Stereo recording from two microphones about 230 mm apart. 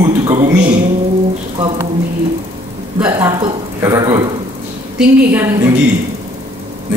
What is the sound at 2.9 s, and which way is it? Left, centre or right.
A woman's voice, centre.